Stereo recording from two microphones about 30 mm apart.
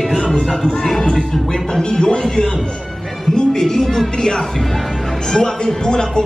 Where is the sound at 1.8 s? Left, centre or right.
Left.